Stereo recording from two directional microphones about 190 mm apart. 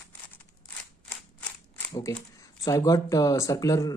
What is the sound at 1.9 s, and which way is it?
Speech, 20° left (ahead or behind).